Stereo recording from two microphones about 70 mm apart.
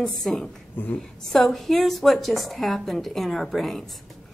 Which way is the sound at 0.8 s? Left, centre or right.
Left.